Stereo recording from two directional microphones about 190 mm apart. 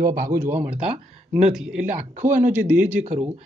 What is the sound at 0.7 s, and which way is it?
Speech, 5° right (ahead or behind).